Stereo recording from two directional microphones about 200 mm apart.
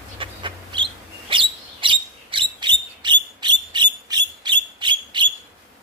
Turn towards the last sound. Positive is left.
turn(degrees=-25)  # may be behind; listen again after turning